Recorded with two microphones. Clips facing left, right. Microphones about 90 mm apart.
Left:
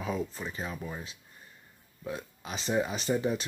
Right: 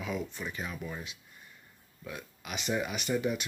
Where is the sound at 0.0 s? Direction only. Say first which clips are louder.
Left 2 dB; 35° left (ahead or behind).